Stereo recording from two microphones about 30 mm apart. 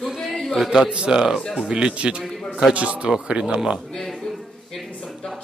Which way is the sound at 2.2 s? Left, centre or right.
Centre.